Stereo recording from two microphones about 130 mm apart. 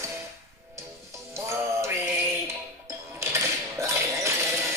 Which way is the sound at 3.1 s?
20° right (ahead or behind).